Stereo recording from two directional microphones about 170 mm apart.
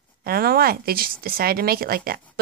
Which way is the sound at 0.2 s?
60° right (ahead or behind).